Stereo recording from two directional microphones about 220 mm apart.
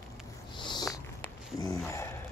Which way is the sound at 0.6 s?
20° left (ahead or behind).